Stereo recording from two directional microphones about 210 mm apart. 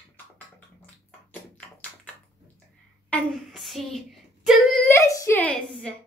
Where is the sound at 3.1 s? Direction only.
5° left (ahead or behind).